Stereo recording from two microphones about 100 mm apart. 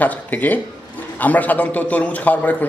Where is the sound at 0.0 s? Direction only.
15° left (ahead or behind).